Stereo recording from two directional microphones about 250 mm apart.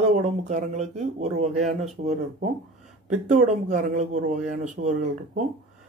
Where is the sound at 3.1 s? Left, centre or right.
Right.